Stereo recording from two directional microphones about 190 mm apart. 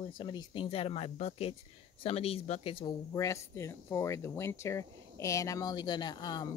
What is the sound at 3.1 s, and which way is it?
Speech, 15° left (ahead or behind).